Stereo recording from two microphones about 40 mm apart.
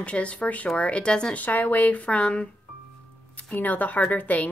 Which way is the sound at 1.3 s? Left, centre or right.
Left.